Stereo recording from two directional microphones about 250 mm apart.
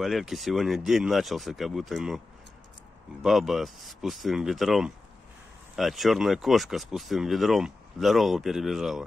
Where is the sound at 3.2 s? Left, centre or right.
Centre.